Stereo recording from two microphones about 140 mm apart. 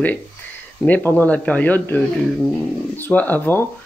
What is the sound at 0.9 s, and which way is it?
Speech, 15° left (ahead or behind).